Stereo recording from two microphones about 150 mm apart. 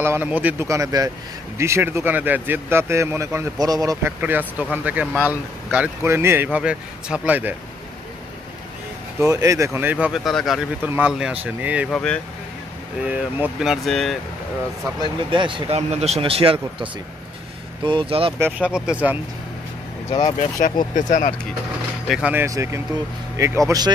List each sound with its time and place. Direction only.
0.0 s speech: 15° right (ahead or behind)
4.2 s speech: 10° right (ahead or behind)
9.2 s speech: 20° right (ahead or behind); by 10.6 s centre (ahead or behind)
10.8 s speech: 10° right (ahead or behind)
11.9 s speech: 5° left (ahead or behind)
13.0 s speech: 10° right (ahead or behind)
15.0 s speech: 35° right (ahead or behind)
15.9 s speech: 45° right (ahead or behind)
17.8 s speech: 35° right (ahead or behind)
18.4 s speech: 5° right (ahead or behind)
20.9 s speech: 55° left (ahead or behind)
22.0 s speech: centre (ahead or behind)
22.3 s speech: 20° right (ahead or behind)